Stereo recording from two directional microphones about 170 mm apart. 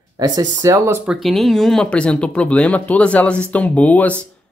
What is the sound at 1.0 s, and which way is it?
Speech, centre (ahead or behind).